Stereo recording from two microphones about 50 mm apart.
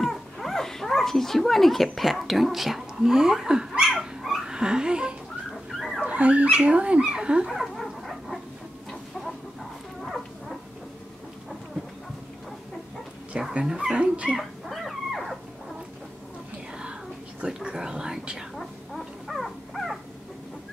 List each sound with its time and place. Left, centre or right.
0.0 s speech: centre
4.4 s dog: centre
5.7 s dog: centre
6.0 s fowl: right
7.7 s dog: centre
10.0 s dog: centre
13.3 s dog: centre
13.7 s speech: centre
14.3 s dog: centre
17.6 s whispering: centre
18.6 s dog: centre